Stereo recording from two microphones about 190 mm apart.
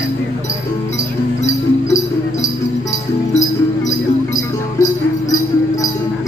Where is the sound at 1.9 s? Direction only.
15° left (ahead or behind).